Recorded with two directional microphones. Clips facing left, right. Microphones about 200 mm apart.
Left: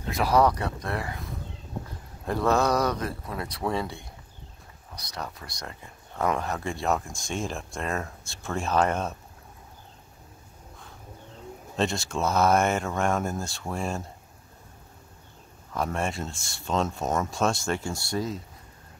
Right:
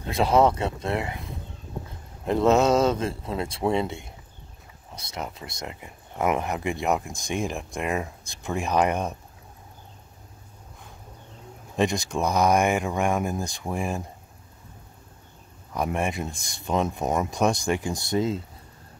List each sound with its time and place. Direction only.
0.1 s speech: 25° right (ahead or behind)
2.2 s speech: 20° right (ahead or behind)
11.7 s speech: 15° right (ahead or behind)
15.7 s speech: 15° right (ahead or behind)